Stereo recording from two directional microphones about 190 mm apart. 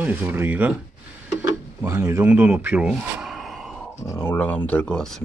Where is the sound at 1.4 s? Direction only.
15° right (ahead or behind).